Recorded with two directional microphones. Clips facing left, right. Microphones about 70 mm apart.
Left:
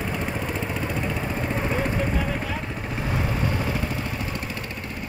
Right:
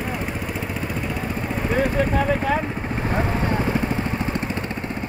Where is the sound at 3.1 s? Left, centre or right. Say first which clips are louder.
Right 4 dB; right.